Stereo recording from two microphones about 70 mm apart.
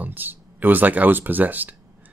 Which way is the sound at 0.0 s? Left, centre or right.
Right.